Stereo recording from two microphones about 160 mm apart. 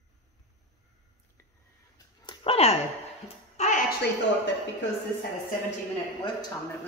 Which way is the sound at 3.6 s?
50° left (ahead or behind).